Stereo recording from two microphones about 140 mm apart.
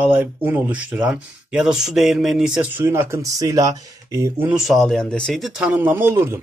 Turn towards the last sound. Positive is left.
turn(degrees=-15)  # may be behind; listen again after turning